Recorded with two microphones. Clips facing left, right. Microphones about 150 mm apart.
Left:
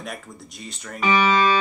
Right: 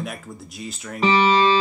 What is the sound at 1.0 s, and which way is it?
Speech, 30° right (ahead or behind).